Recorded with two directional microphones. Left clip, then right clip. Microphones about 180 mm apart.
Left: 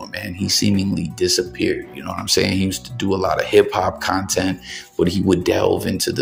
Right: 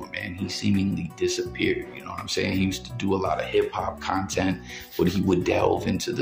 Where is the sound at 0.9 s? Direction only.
30° left (ahead or behind).